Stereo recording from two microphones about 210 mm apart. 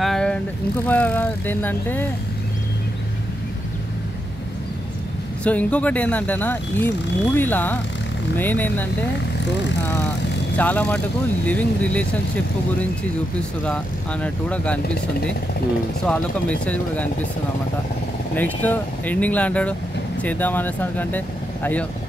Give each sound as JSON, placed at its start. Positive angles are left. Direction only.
{"t": 0.0, "sound": "vehicle", "side_deg": 5}
{"t": 0.8, "sound": "speech", "side_deg": 10}
{"t": 5.4, "sound": "speech", "side_deg": 5}
{"t": 10.6, "sound": "speech", "side_deg": 5}
{"t": 14.2, "sound": "speech", "side_deg": 5}
{"t": 16.1, "sound": "speech", "side_deg": 5}
{"t": 18.3, "sound": "speech", "side_deg": 10}